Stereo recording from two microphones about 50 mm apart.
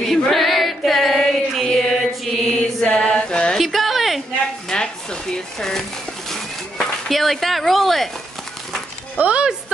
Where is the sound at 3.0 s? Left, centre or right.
Centre.